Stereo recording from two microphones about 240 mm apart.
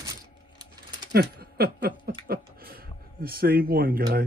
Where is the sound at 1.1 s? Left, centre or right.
Right.